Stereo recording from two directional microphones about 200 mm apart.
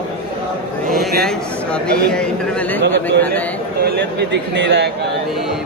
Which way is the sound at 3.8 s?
55° right (ahead or behind).